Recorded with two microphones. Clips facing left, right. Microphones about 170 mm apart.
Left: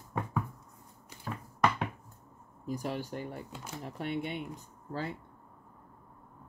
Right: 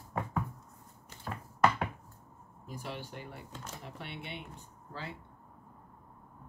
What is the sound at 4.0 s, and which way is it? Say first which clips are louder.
Speech: left 11 dB; 45° left (ahead or behind).